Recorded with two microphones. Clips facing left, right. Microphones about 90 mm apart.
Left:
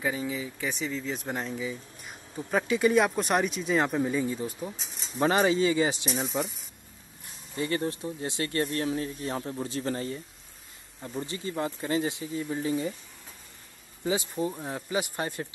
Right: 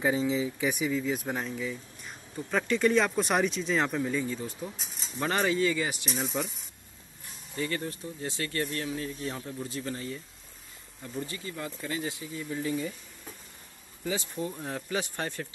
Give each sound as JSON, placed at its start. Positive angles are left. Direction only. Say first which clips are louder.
{"t": 0.3, "sound": "speech", "louder": "right 4 dB", "side_deg": -15}
{"t": 5.3, "sound": "speech", "louder": "left 2 dB", "side_deg": 20}
{"t": 6.0, "sound": "speech", "louder": "left 2 dB", "side_deg": 0}
{"t": 7.5, "sound": "speech", "louder": "left 4 dB", "side_deg": 30}
{"t": 8.5, "sound": "speech", "louder": "left 5 dB", "side_deg": 35}
{"t": 11.0, "sound": "speech", "louder": "left 2 dB", "side_deg": 25}
{"t": 14.0, "sound": "speech", "louder": "left 4 dB", "side_deg": 15}